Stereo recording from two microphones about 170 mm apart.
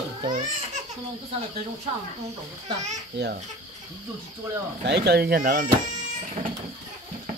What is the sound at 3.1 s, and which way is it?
Speech, 90° right.